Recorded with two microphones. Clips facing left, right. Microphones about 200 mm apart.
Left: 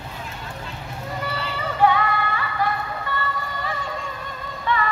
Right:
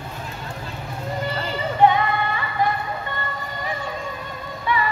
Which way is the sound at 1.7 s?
20° right (ahead or behind).